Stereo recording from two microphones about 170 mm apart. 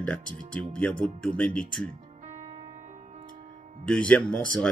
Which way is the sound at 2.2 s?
45° right (ahead or behind).